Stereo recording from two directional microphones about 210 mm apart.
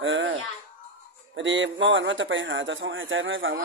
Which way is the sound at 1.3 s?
60° right (ahead or behind).